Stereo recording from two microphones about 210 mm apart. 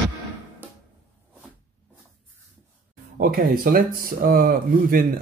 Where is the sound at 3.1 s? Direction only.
45° right (ahead or behind).